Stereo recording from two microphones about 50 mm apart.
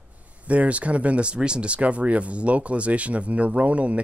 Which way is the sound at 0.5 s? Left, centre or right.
Right.